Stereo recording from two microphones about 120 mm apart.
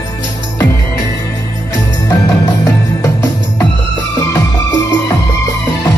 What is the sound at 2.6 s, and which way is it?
Music, 30° left (ahead or behind).